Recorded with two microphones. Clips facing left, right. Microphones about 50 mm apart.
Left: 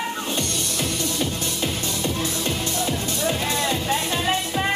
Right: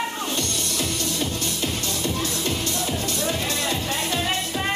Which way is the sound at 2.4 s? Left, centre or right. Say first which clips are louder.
Left 1 dB; left.